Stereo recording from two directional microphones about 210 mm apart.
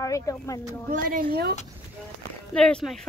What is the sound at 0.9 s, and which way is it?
Speech, 45° right (ahead or behind).